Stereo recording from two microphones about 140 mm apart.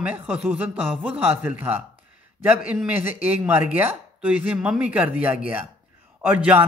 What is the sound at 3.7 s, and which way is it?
Speech, 10° right (ahead or behind).